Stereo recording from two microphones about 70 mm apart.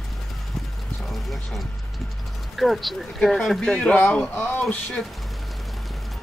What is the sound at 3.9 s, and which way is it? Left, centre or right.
Speech, centre.